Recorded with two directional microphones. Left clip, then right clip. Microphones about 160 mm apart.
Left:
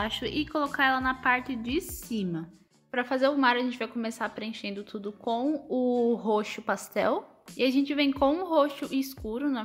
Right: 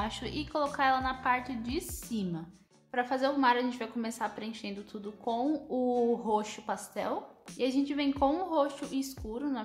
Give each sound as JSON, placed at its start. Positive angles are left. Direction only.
{"t": 0.0, "sound": "a woman's voice", "side_deg": 20}
{"t": 7.5, "sound": "a woman's voice", "side_deg": 25}